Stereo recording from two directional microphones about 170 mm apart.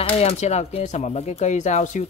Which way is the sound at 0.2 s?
40° left (ahead or behind).